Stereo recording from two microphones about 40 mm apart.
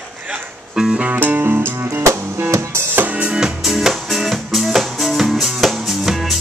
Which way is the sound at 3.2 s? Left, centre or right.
Centre.